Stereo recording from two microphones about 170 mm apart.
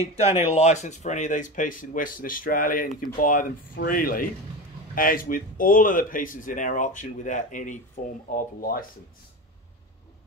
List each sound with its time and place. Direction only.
0.1 s speech: 40° left (ahead or behind); by 8.8 s 55° left (ahead or behind)